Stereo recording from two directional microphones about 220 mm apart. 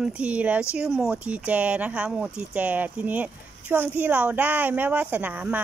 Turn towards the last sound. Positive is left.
turn(degrees=-10)  # may be behind; listen again after turning